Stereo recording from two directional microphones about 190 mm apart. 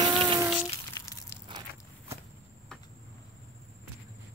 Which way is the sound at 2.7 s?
5° left (ahead or behind).